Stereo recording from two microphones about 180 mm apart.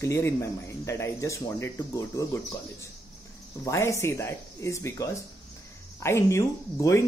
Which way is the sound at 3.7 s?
15° left (ahead or behind).